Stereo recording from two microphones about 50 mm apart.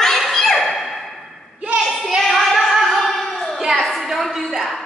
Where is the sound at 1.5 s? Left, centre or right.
Right.